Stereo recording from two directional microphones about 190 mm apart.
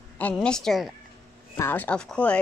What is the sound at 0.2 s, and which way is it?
A woman's voice, 5° left (ahead or behind).